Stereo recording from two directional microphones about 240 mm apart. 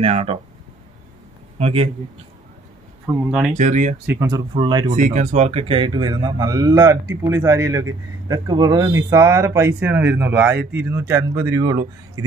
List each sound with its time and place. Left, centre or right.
0.0 s speech: right
1.6 s speech: right
3.3 s speech: centre
3.5 s speech: right
4.0 s speech: centre
4.9 s speech: right; by 11.8 s centre